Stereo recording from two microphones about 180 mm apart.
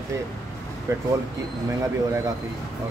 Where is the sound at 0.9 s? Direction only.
15° right (ahead or behind).